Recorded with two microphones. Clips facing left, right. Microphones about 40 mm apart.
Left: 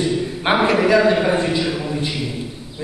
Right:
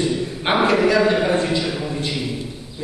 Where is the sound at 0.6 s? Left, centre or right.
Centre.